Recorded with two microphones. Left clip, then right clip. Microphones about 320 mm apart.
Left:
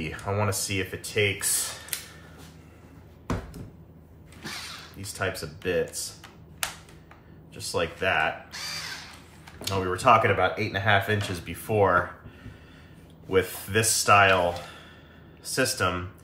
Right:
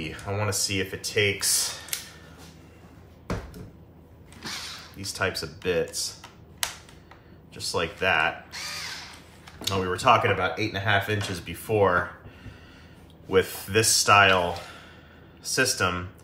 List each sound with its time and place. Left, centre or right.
0.0 s speech: centre
5.1 s speech: centre
7.5 s speech: centre
13.3 s speech: centre